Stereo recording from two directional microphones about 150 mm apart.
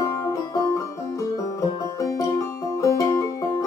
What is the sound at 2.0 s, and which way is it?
Music, 20° left (ahead or behind).